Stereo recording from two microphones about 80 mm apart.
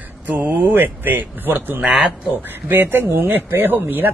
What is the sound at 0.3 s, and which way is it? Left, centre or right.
Speech, right.